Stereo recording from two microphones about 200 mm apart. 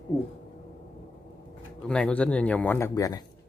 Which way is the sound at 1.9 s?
5° left (ahead or behind).